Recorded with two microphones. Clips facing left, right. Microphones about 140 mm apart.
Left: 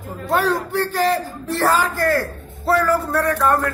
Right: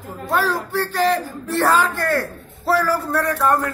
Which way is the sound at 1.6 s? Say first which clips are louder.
Even; 35° left (ahead or behind).